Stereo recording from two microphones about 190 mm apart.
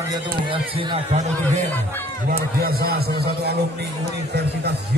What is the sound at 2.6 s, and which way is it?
Speech, 50° right (ahead or behind).